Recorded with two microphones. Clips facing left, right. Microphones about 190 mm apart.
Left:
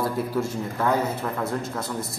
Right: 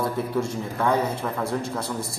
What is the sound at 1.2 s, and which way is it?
Speech, centre (ahead or behind).